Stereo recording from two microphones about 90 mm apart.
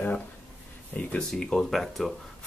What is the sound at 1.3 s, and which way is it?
Speech, 5° left (ahead or behind).